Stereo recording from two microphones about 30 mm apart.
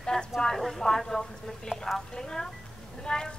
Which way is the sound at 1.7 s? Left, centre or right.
Centre.